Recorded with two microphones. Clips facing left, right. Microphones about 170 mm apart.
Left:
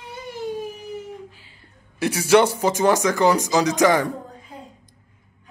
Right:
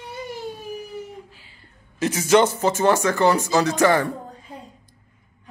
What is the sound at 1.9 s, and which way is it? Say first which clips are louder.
A man's voice: left 1 dB; 10° left (ahead or behind).